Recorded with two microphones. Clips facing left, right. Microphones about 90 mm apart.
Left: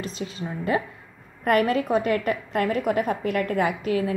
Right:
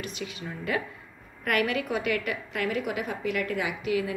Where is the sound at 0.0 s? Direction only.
35° left (ahead or behind).